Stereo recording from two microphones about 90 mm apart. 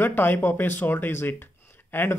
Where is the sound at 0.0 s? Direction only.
20° left (ahead or behind).